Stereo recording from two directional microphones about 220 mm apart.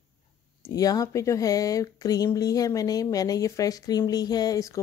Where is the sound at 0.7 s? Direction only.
15° left (ahead or behind).